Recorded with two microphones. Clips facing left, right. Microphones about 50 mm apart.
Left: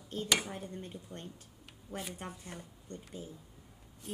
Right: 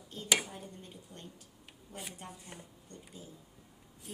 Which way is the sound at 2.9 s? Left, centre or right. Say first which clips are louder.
Left 6 dB; left.